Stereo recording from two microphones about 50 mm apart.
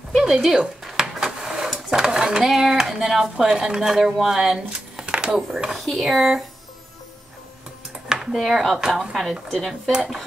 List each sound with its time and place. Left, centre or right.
0.1 s speech: centre
0.8 s a sound: centre
2.4 s speech: centre
3.4 s speech: centre
4.7 s a sound: right
5.7 s speech: centre
8.1 s speech: centre